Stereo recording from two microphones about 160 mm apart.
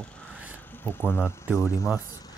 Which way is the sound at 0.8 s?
15° left (ahead or behind).